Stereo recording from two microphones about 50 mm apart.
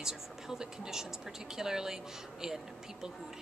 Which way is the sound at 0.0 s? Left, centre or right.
Centre.